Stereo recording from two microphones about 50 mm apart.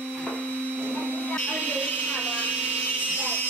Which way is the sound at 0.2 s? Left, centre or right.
Left.